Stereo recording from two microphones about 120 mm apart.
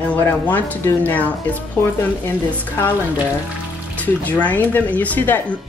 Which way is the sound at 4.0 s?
10° left (ahead or behind).